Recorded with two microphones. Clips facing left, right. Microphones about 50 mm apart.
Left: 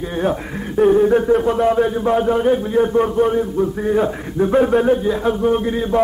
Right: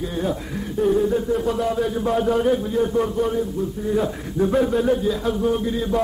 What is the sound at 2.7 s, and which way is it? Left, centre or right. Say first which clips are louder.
A man's voice: left 5 dB; left.